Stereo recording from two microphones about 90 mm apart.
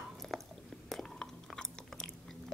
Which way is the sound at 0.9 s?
5° left (ahead or behind).